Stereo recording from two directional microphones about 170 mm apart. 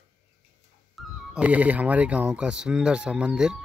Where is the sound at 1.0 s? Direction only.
Centre (ahead or behind).